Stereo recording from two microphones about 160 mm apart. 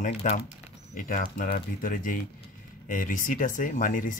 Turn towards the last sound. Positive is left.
turn(degrees=55)  # may be behind; listen again after turning